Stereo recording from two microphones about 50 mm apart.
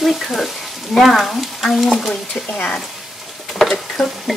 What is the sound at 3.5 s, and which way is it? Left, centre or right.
Stir, centre.